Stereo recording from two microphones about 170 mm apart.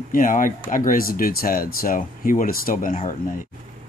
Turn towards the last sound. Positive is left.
turn(degrees=50)  # may be behind; listen again after turning